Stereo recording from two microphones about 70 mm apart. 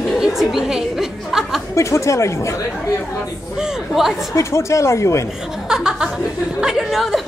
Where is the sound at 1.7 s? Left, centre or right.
Left.